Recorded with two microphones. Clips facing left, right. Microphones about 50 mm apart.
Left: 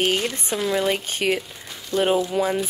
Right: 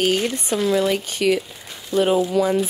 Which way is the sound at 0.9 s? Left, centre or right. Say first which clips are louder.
Right 3 dB; left.